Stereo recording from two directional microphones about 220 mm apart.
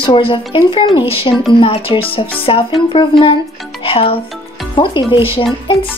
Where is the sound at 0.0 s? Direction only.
25° left (ahead or behind).